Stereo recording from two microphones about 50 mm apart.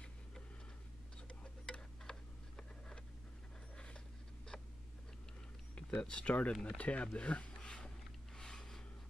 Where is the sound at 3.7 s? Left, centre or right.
Centre.